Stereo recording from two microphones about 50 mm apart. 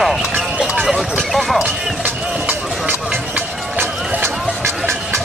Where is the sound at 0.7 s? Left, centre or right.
Centre.